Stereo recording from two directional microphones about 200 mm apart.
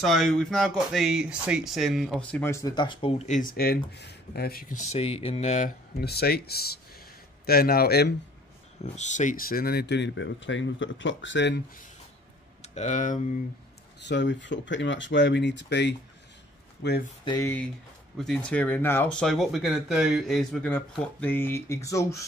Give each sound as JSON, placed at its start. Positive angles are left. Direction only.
{"t": 0.0, "sound": "speech", "side_deg": 0}
{"t": 4.9, "sound": "speech", "side_deg": 30}
{"t": 5.9, "sound": "speech", "side_deg": 55}
{"t": 8.9, "sound": "speech", "side_deg": 35}
{"t": 12.6, "sound": "speech", "side_deg": 35}
{"t": 14.0, "sound": "speech", "side_deg": 60}
{"t": 17.2, "sound": "speech", "side_deg": 15}
{"t": 18.1, "sound": "speech", "side_deg": 0}